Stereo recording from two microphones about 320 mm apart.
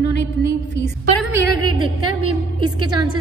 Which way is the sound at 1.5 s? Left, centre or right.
Right.